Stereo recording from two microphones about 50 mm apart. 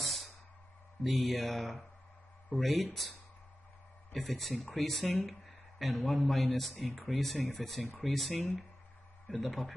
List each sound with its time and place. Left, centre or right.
0.0 s music: centre
1.0 s speech: centre
4.1 s speech: centre